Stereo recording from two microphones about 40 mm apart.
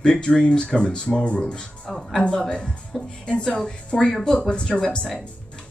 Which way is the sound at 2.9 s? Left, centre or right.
Centre.